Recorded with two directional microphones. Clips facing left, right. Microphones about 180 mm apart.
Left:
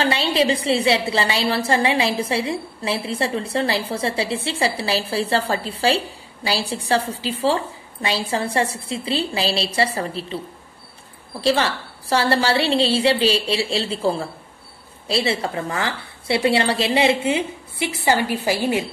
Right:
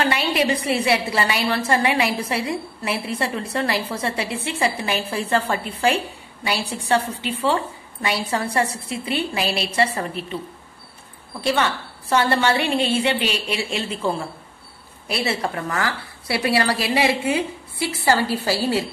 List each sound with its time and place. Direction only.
0.0 s a woman's voice: 30° left (ahead or behind)
11.4 s a woman's voice: 30° left (ahead or behind)